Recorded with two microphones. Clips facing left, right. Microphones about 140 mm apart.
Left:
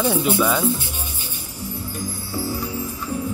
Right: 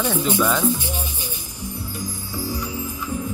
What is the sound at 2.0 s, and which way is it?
Music, 15° right (ahead or behind).